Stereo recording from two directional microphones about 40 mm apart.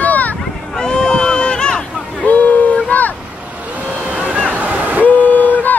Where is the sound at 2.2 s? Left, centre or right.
Left.